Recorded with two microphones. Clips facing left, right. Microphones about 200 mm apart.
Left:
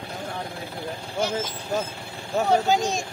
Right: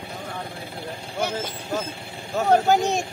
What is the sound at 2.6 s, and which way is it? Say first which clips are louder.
Speech: right 3 dB; 60° right (ahead or behind).